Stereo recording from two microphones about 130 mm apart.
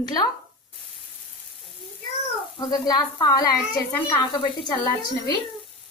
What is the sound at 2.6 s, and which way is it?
A woman's voice, 30° left (ahead or behind).